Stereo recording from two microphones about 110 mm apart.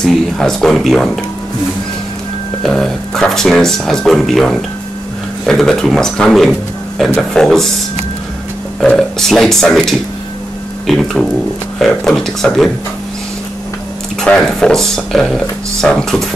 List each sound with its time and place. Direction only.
0.0 s speech: 5° left (ahead or behind)
2.6 s speech: 5° left (ahead or behind)
8.8 s speech: 5° left (ahead or behind)
14.2 s speech: 10° left (ahead or behind)